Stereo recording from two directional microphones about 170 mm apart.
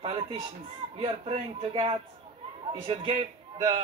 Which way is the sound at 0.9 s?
35° right (ahead or behind).